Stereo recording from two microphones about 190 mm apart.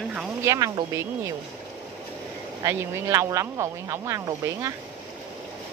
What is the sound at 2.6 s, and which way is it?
Speech, 15° right (ahead or behind).